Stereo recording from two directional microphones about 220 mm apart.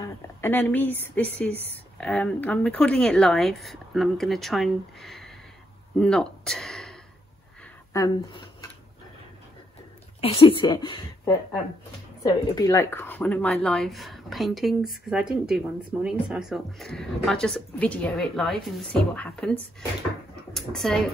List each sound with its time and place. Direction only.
0.0 s speech: 10° left (ahead or behind)
7.9 s speech: 15° left (ahead or behind)
10.2 s speech: 25° left (ahead or behind); by 21.0 s centre (ahead or behind)